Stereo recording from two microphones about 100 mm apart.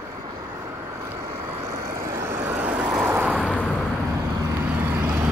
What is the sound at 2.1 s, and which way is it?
Vehicle, 25° right (ahead or behind).